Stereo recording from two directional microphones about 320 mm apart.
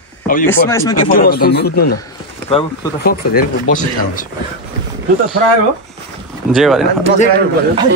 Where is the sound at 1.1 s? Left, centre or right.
Left.